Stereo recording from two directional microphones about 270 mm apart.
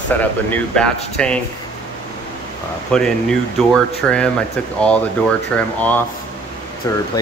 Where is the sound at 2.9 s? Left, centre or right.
Centre.